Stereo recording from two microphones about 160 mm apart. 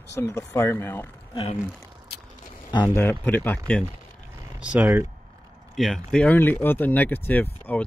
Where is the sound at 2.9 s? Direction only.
10° left (ahead or behind).